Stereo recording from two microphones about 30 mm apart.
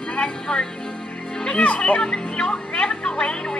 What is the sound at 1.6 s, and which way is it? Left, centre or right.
Speech, left.